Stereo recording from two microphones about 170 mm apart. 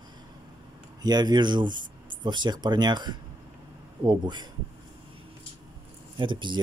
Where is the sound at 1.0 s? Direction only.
25° right (ahead or behind).